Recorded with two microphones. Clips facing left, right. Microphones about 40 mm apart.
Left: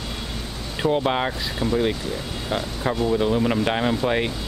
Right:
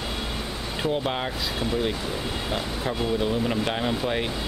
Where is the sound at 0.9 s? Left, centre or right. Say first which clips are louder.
Left 6 dB; centre.